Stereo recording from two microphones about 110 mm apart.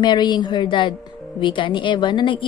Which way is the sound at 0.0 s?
40° left (ahead or behind).